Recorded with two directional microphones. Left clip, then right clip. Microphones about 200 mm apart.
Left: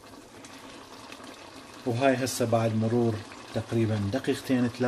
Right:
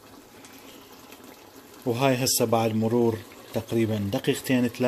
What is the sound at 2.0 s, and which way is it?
Speech, 40° right (ahead or behind).